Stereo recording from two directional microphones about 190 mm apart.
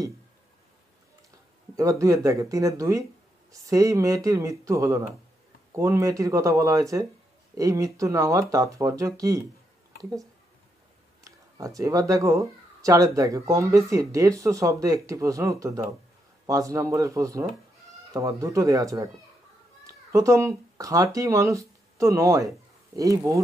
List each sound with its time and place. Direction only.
1.8 s speech: 15° right (ahead or behind)
11.2 s speech: 15° right (ahead or behind)
20.1 s speech: 15° right (ahead or behind)